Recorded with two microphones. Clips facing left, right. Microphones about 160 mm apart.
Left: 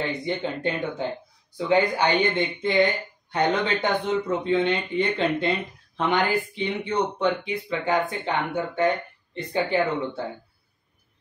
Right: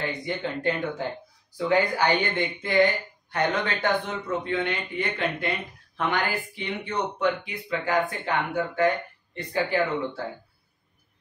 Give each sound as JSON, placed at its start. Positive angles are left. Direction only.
{"t": 0.2, "sound": "speech", "side_deg": 25}